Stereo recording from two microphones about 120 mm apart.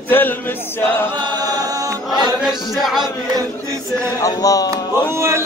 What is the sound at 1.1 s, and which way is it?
Chant, 35° right (ahead or behind).